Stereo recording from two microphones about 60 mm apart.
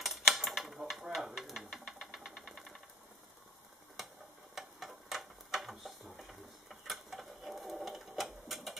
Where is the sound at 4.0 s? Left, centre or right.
Centre.